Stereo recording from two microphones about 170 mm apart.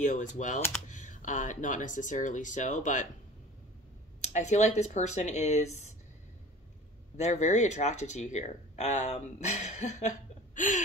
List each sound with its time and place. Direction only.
0.0 s speech: 45° left (ahead or behind)
4.2 s speech: 45° left (ahead or behind)
7.2 s speech: 45° left (ahead or behind)